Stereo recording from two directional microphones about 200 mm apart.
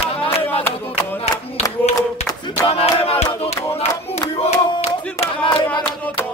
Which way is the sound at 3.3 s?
30° left (ahead or behind).